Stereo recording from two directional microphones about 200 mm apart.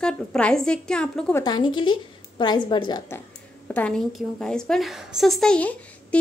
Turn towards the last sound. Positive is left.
turn(degrees=5)  # may be behind; listen again after turning